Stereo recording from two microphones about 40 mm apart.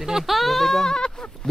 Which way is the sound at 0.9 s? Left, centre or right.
Centre.